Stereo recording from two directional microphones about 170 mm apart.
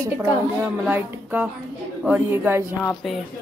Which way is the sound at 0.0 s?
15° right (ahead or behind).